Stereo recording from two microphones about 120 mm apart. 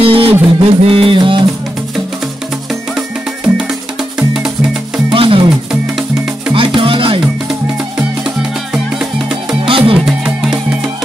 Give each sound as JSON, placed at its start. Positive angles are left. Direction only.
{"t": 0.0, "sound": "music", "side_deg": -50}
{"t": 4.2, "sound": "music", "side_deg": -5}
{"t": 5.1, "sound": "music", "side_deg": -50}
{"t": 5.7, "sound": "music", "side_deg": -5}
{"t": 6.5, "sound": "music", "side_deg": -50}
{"t": 8.7, "sound": "music", "side_deg": -5}
{"t": 9.7, "sound": "music", "side_deg": -50}
{"t": 10.0, "sound": "music", "side_deg": -5}